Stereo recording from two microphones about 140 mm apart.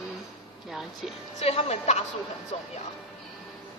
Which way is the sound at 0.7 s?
Centre (ahead or behind).